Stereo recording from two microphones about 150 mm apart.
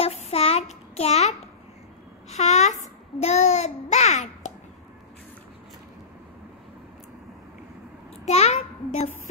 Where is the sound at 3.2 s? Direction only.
45° left (ahead or behind).